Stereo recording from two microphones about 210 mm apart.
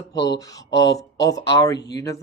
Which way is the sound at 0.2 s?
15° left (ahead or behind).